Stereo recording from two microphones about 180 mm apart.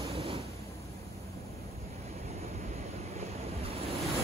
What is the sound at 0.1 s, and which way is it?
Vehicle, 30° right (ahead or behind).